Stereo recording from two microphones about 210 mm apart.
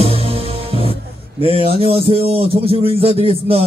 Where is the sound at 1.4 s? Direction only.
25° right (ahead or behind).